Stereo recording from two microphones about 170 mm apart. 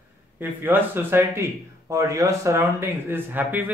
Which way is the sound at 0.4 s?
10° right (ahead or behind).